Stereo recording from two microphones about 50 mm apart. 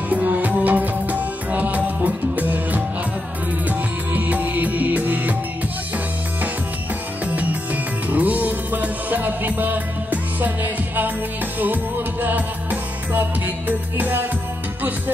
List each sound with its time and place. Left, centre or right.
0.1 s music: right
7.2 s music: right